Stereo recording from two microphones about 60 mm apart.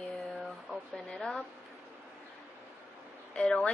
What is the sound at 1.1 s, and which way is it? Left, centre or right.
Speech, centre.